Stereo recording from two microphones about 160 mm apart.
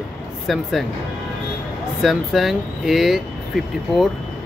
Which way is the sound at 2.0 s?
Centre (ahead or behind).